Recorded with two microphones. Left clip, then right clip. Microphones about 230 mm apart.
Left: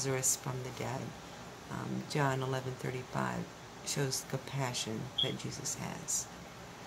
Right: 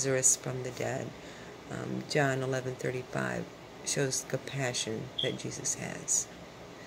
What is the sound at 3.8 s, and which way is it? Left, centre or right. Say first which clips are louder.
Speech: right 5 dB; centre.